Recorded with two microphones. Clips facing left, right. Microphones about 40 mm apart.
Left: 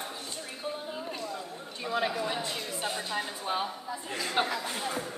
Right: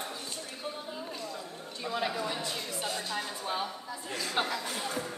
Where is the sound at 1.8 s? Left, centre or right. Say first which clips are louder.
Left 2 dB; centre.